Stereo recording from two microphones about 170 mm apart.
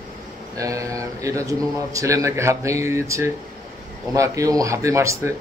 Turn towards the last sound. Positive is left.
turn(degrees=-15)  # may be behind; listen again after turning